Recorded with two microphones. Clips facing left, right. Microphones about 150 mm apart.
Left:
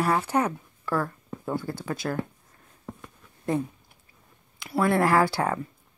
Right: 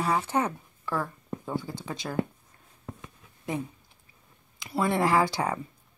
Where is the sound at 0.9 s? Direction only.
10° right (ahead or behind).